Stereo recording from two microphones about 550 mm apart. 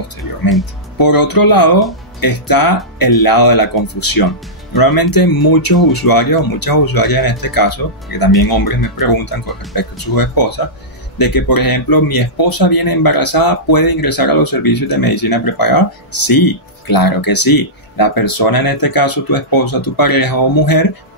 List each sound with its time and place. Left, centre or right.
0.9 s speech: left